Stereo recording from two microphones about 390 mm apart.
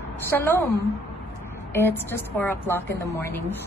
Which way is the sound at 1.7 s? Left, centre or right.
Centre.